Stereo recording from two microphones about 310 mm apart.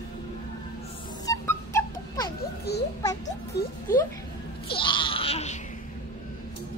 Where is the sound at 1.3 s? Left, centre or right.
Centre.